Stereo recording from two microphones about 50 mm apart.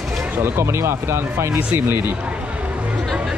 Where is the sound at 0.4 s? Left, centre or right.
Right.